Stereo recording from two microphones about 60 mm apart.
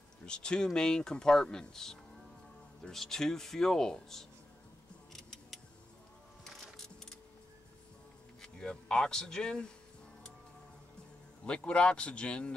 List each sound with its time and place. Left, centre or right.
0.2 s speech: centre
5.1 s music: centre
8.4 s speech: centre
11.4 s speech: centre